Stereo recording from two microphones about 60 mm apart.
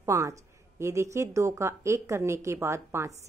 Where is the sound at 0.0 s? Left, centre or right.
Right.